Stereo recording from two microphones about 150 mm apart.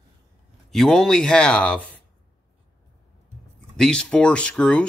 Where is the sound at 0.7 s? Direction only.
5° left (ahead or behind).